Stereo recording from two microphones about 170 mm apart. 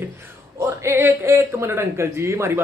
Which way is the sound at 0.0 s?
15° right (ahead or behind).